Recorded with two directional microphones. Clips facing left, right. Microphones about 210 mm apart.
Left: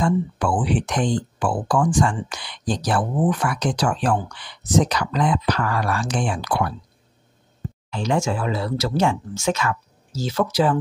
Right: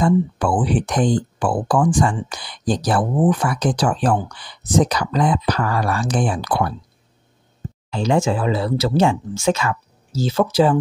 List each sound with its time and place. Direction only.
0.0 s speech: 35° right (ahead or behind)
7.9 s speech: 30° right (ahead or behind)